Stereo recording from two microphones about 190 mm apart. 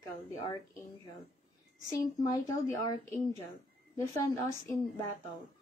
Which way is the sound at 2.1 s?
20° left (ahead or behind).